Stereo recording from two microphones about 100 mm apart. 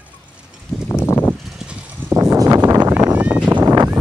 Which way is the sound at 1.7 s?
10° right (ahead or behind).